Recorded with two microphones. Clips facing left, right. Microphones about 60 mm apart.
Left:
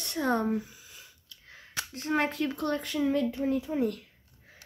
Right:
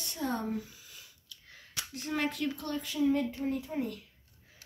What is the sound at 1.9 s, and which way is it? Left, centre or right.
Speech, left.